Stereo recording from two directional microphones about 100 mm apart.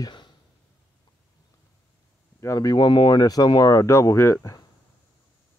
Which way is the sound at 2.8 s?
55° left (ahead or behind).